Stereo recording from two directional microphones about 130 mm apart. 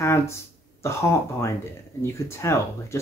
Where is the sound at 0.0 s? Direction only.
20° left (ahead or behind).